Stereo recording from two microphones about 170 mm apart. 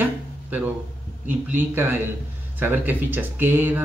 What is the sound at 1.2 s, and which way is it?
Speech, 10° right (ahead or behind).